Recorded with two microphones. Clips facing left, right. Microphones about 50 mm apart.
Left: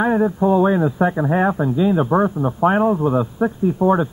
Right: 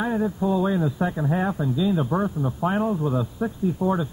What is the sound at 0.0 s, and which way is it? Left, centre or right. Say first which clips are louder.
Speech: left 7 dB; left.